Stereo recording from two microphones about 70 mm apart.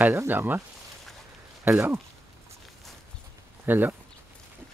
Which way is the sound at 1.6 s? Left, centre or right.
Right.